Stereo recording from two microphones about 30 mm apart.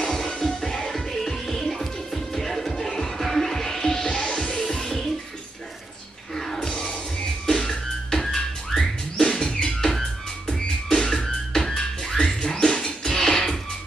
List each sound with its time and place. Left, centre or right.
0.0 s music: centre
4.0 s music: left
6.3 s music: centre
9.1 s music: left
12.4 s beatboxing: centre
12.8 s music: centre